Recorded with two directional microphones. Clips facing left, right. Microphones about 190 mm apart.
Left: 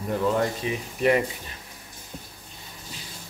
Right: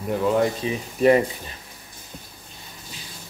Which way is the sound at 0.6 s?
35° right (ahead or behind).